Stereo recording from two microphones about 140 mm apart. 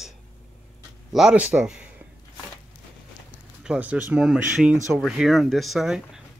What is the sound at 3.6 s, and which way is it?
Speech, 10° right (ahead or behind).